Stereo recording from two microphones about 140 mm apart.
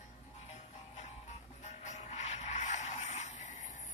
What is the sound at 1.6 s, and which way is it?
Vehicle, 55° left (ahead or behind).